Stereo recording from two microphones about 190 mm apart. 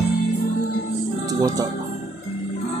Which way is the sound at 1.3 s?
20° right (ahead or behind).